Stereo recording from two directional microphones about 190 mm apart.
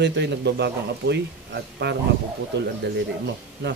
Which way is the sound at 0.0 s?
65° right (ahead or behind).